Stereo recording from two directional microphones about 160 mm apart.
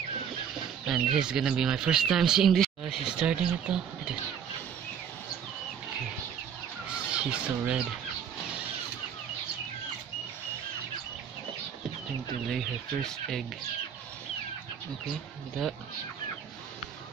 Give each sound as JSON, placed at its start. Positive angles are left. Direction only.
{"t": 0.8, "sound": "speech", "side_deg": -5}
{"t": 6.9, "sound": "crow", "side_deg": -5}
{"t": 12.4, "sound": "speech", "side_deg": 0}